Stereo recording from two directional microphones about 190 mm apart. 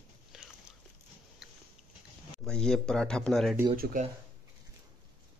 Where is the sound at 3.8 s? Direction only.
45° right (ahead or behind).